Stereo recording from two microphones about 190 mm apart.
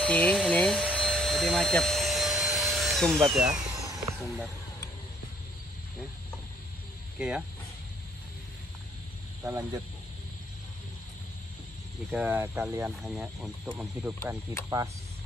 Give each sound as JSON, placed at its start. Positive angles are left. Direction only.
{"t": 0.0, "sound": "speech", "side_deg": 5}
{"t": 0.9, "sound": "vacuum cleaner", "side_deg": 0}
{"t": 7.2, "sound": "speech", "side_deg": -5}
{"t": 9.4, "sound": "speech", "side_deg": -20}
{"t": 12.1, "sound": "speech", "side_deg": -10}
{"t": 13.7, "sound": "speech", "side_deg": -15}